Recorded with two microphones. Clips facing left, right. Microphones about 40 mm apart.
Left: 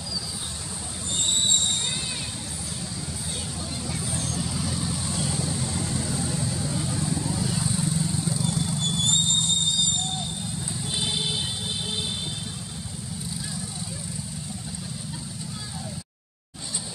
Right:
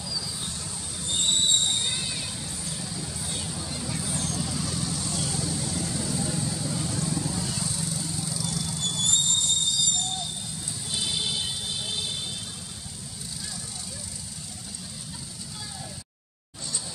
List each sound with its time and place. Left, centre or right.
3.0 s vehicle: centre; by 9.2 s left